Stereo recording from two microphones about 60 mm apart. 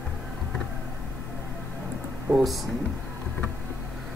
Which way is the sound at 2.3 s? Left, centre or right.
Right.